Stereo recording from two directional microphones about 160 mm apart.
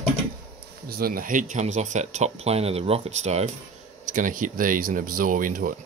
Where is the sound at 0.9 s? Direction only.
65° right (ahead or behind); by 3.5 s 45° right (ahead or behind).